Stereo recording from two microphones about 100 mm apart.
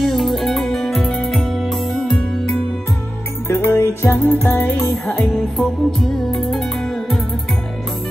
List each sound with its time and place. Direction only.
0.0 s music: centre (ahead or behind)
3.4 s music: 25° left (ahead or behind)
5.1 s music: centre (ahead or behind)